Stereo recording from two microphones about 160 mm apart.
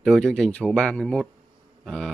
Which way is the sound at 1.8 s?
5° left (ahead or behind).